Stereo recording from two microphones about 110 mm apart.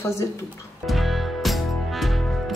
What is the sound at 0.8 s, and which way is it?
Music, centre (ahead or behind).